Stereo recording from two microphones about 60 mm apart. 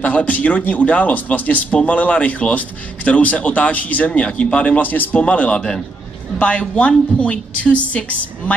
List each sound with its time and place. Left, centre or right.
0.0 s speech: left